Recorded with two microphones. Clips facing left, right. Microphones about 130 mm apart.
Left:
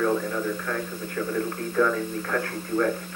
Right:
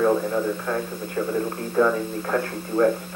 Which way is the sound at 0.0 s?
30° right (ahead or behind).